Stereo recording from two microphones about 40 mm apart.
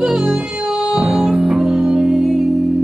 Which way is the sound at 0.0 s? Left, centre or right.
Centre.